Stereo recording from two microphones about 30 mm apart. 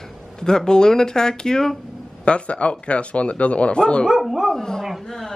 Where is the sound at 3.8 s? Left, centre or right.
Left.